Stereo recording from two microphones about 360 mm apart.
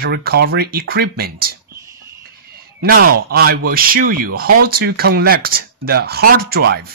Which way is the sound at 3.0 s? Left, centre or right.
Right.